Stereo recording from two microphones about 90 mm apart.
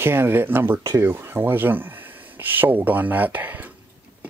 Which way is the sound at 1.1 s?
25° right (ahead or behind).